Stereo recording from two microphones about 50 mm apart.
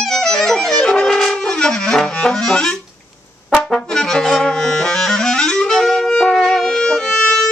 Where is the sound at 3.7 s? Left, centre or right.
Centre.